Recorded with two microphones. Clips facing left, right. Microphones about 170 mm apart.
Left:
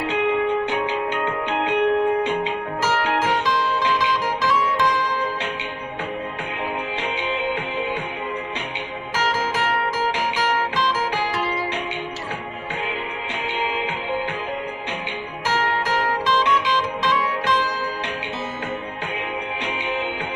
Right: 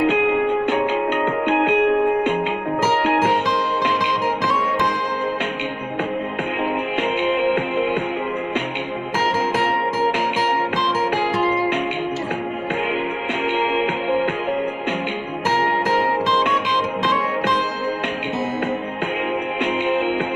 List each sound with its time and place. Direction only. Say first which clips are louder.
0.1 s music: right 2 dB; 50° right (ahead or behind)
7.2 s music: right 8 dB; 50° right (ahead or behind)